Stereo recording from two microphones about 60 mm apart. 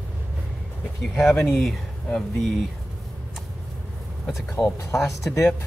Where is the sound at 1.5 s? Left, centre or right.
Centre.